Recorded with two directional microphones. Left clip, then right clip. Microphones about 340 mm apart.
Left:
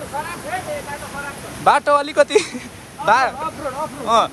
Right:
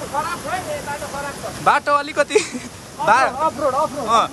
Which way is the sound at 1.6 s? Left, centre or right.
Centre.